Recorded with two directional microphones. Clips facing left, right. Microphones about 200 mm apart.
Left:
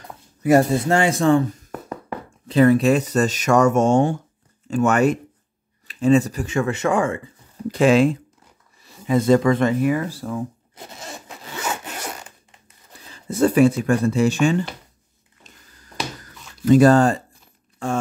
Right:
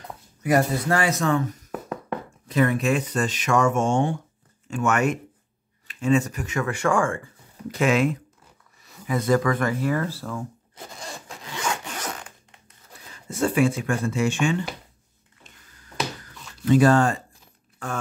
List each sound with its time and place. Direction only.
0.4 s speech: 25° left (ahead or behind)
1.7 s a sound: centre (ahead or behind)
2.4 s speech: 30° left (ahead or behind)
7.6 s speech: 30° left (ahead or behind); by 10.4 s 15° left (ahead or behind)
11.0 s zipper: centre (ahead or behind)
13.1 s speech: 35° left (ahead or behind)
15.5 s a sound: 40° left (ahead or behind)
16.7 s speech: 40° left (ahead or behind)
17.8 s speech: 25° left (ahead or behind)